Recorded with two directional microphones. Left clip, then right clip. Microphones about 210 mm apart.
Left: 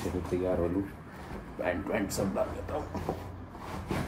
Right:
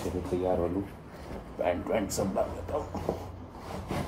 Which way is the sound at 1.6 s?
10° right (ahead or behind).